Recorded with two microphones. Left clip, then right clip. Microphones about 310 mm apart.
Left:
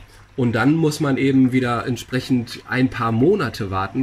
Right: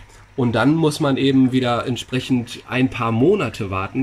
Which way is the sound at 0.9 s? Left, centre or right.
Centre.